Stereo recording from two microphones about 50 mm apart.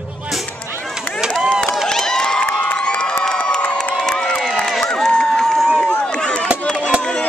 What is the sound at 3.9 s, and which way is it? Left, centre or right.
Crowd, centre.